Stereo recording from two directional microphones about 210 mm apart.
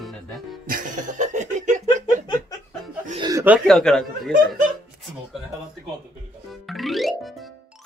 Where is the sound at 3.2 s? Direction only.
15° right (ahead or behind).